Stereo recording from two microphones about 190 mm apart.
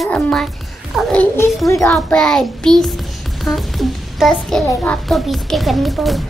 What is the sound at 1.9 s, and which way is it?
A child's voice, 5° left (ahead or behind).